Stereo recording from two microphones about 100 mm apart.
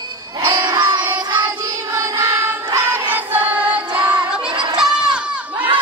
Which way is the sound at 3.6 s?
15° right (ahead or behind).